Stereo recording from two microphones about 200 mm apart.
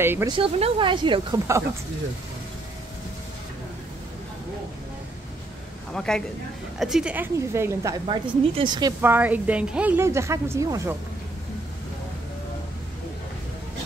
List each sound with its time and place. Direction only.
0.0 s speech: 10° right (ahead or behind)
0.3 s speech: 25° right (ahead or behind)
5.9 s speech: 5° left (ahead or behind); by 8.9 s 20° right (ahead or behind)
9.0 s speech: 10° right (ahead or behind)